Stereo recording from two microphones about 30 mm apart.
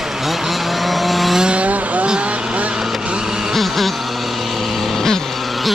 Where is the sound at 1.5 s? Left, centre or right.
Right.